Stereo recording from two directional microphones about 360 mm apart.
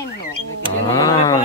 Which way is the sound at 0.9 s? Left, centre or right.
Centre.